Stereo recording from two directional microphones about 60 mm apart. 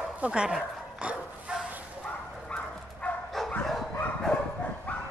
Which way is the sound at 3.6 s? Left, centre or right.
Centre.